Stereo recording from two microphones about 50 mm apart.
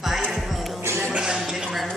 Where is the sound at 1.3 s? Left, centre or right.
Centre.